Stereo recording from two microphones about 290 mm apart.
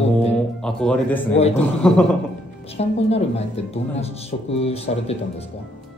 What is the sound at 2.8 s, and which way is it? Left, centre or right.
Speech, left.